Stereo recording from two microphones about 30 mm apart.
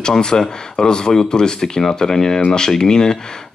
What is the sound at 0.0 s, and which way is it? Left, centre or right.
Speech, left.